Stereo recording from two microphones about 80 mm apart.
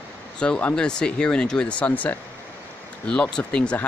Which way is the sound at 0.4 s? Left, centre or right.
Centre.